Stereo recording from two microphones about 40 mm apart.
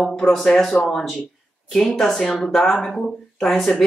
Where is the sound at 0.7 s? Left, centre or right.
Left.